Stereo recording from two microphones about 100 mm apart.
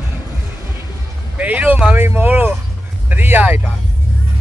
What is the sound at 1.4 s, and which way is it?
Speech, 15° right (ahead or behind).